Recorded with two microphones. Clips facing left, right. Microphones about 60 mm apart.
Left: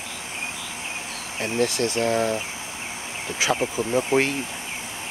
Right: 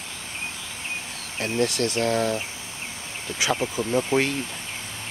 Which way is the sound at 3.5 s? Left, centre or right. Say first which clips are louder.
Left 1 dB; centre.